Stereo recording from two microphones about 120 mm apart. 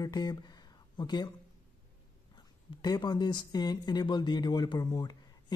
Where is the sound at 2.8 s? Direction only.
35° left (ahead or behind).